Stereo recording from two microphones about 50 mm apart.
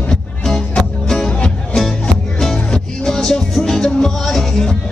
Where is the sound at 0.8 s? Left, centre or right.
Centre.